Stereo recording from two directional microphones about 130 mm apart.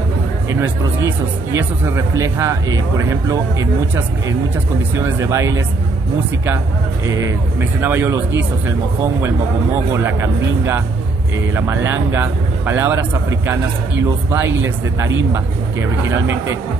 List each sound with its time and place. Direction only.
1.5 s speech: 20° right (ahead or behind)
4.9 s speech: 20° right (ahead or behind)
7.1 s speech: 25° right (ahead or behind)
9.9 s speech: 20° right (ahead or behind)
14.3 s speech: 15° right (ahead or behind)